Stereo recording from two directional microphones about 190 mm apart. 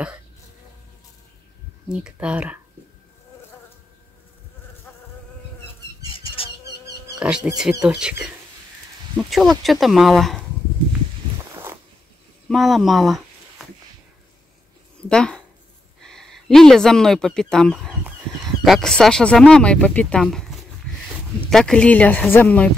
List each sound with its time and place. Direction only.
1.9 s speech: 5° right (ahead or behind)
6.1 s bee: 30° left (ahead or behind)
7.2 s speech: 5° right (ahead or behind)
11.5 s walk: 15° right (ahead or behind)
12.4 s a sound: centre (ahead or behind)
15.0 s speech: 5° left (ahead or behind)